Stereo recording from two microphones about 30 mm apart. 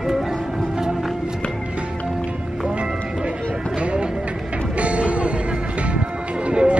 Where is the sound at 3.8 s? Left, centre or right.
Right.